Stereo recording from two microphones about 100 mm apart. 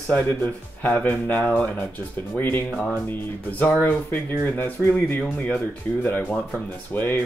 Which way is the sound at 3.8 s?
15° left (ahead or behind).